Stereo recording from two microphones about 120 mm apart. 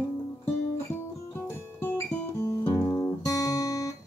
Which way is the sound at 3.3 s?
30° left (ahead or behind).